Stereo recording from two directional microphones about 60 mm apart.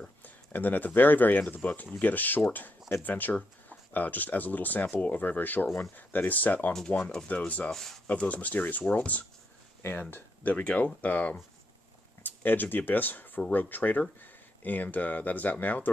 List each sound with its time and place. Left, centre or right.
0.2 s speech: left
7.7 s speech: centre
8.1 s speech: left
9.8 s speech: left
10.1 s speech: left